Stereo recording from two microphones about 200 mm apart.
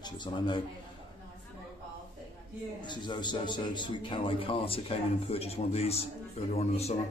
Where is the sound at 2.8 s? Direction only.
20° left (ahead or behind).